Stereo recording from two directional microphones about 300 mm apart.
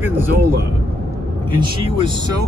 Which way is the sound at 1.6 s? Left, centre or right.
Centre.